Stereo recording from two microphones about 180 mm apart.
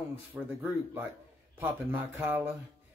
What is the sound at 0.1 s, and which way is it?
Speech, 10° right (ahead or behind).